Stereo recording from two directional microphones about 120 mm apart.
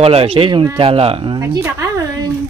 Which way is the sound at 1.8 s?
30° right (ahead or behind).